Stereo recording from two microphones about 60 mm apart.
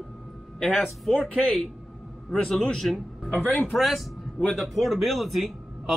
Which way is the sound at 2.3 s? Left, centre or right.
Centre.